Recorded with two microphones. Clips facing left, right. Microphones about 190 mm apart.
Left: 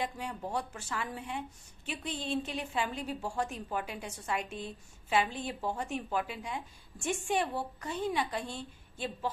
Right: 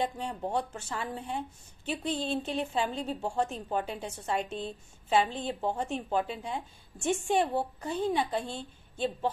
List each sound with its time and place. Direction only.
0.0 s a woman's voice: 30° right (ahead or behind)